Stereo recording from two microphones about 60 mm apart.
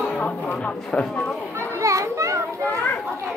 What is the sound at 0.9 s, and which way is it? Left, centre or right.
Speech, centre.